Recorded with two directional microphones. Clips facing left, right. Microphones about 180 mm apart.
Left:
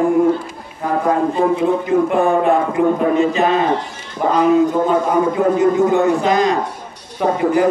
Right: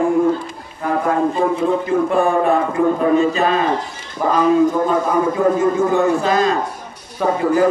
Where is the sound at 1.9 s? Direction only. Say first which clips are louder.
Left 2 dB; 20° left (ahead or behind).